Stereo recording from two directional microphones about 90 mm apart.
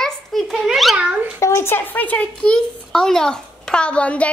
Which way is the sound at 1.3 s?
30° left (ahead or behind).